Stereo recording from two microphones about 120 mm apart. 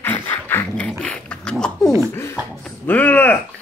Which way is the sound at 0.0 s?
15° left (ahead or behind).